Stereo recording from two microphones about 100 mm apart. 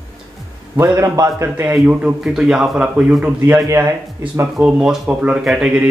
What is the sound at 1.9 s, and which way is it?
Speech, 10° right (ahead or behind).